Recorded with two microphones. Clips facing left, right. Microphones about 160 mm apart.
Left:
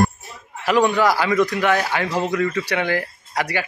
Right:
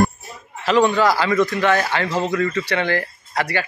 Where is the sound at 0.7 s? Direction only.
10° left (ahead or behind).